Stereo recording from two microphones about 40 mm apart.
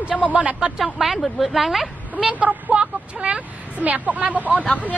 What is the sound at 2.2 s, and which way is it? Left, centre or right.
Speech, right.